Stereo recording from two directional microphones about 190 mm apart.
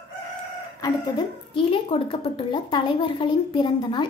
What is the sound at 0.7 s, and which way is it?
A woman's voice, 20° left (ahead or behind).